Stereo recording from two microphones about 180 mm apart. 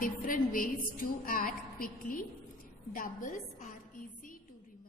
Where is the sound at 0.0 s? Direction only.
50° left (ahead or behind).